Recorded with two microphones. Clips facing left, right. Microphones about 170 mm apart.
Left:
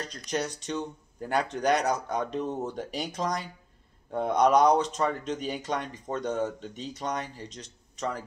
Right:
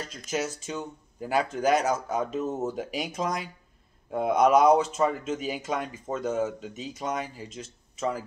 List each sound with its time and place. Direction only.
0.3 s speech: 5° right (ahead or behind)